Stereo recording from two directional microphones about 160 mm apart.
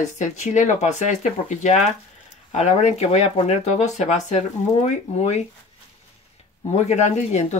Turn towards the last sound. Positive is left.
turn(degrees=45)  # may be behind; listen again after turning